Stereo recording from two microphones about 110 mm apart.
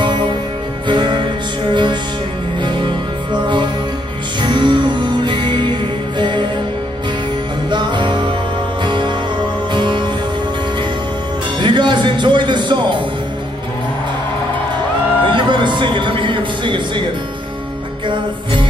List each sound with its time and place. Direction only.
0.8 s music: 45° right (ahead or behind)
7.7 s music: 45° right (ahead or behind)
11.6 s music: 45° right (ahead or behind)
15.2 s a sound: 45° right (ahead or behind)
18.0 s music: 50° right (ahead or behind)